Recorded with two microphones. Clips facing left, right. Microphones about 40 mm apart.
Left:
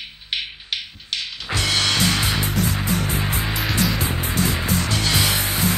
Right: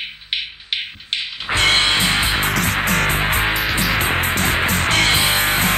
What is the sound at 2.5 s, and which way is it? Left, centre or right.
Music, right.